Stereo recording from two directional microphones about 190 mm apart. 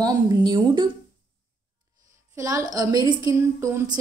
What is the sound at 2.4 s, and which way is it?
Speech, 15° right (ahead or behind).